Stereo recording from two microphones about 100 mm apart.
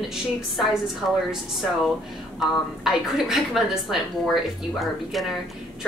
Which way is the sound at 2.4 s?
5° right (ahead or behind).